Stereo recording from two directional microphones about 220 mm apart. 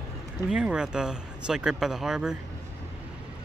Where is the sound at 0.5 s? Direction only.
5° right (ahead or behind).